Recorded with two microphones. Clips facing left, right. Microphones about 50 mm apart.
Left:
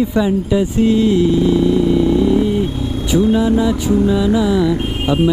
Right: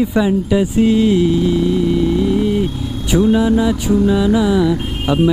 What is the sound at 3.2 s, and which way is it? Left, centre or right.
Mantra, centre.